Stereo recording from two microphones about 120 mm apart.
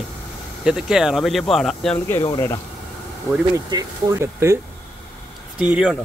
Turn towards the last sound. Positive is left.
turn(degrees=-5)  # may be behind; listen again after turning